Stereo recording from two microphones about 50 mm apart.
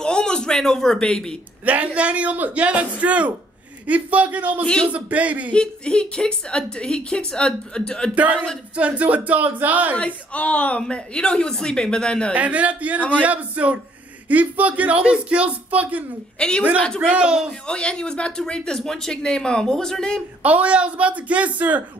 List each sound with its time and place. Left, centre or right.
0.0 s a man's voice: centre
1.7 s speech: right
5.5 s a woman's voice: centre
8.1 s speech: right
9.9 s speech: left
10.8 s a woman's voice: centre
12.4 s speech: right
16.3 s a woman's voice: centre
17.1 s speech: centre
17.6 s a woman's voice: centre
20.4 s speech: right